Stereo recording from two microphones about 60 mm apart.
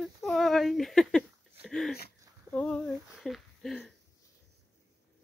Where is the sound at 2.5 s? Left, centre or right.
Left.